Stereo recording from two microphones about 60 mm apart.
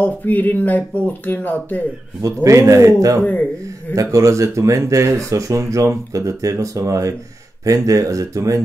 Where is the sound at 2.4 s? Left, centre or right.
Right.